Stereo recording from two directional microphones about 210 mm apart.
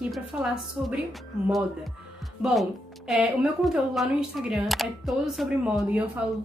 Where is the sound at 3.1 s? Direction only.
Centre (ahead or behind).